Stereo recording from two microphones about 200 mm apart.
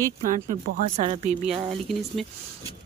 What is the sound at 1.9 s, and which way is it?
Speech, centre (ahead or behind).